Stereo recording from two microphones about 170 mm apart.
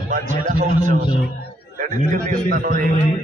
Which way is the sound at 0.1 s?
45° right (ahead or behind).